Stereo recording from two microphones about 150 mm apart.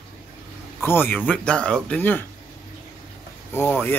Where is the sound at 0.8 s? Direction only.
15° left (ahead or behind).